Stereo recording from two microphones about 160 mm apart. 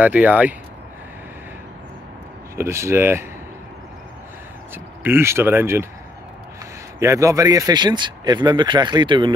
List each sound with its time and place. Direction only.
0.0 s speech: 10° right (ahead or behind)
2.5 s speech: 15° right (ahead or behind)
4.7 s speech: 15° right (ahead or behind)
7.0 s speech: 20° right (ahead or behind)